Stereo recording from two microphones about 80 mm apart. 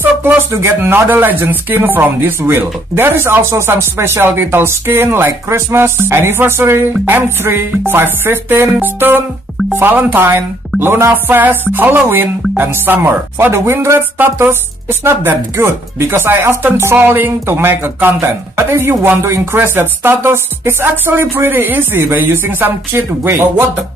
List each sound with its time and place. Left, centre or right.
0.0 s speech: right